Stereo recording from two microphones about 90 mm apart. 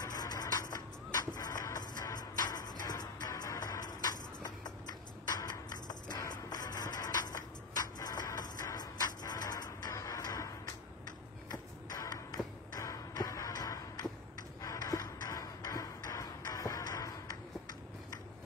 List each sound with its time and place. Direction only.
0.0 s vehicle: 45° left (ahead or behind)
1.3 s music: 45° left (ahead or behind)
11.1 s a sound: 40° left (ahead or behind)